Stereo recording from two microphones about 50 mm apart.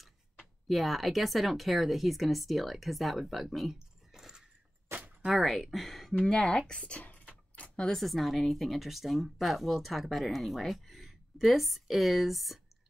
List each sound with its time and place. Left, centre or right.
0.7 s speech: centre; by 7.2 s left
7.5 s a sound: left
7.8 s speech: centre